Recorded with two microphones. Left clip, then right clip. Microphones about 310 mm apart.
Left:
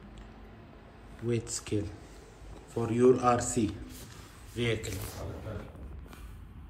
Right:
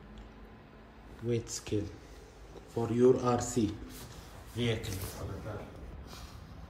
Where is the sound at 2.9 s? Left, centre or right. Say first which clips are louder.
Left 2 dB; right.